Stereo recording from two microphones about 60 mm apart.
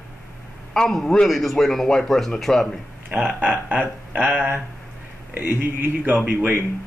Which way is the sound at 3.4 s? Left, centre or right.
Right.